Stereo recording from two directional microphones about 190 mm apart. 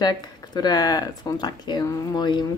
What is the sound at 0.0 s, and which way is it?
Speech, 20° left (ahead or behind).